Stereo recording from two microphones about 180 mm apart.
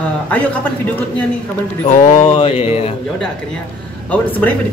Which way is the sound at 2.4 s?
35° left (ahead or behind).